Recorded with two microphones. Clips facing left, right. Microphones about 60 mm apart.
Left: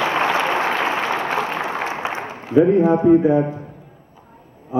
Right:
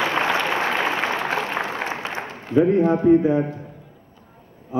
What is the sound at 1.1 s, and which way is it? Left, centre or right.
Applause, centre.